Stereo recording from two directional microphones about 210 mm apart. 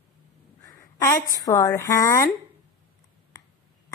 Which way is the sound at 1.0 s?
15° left (ahead or behind).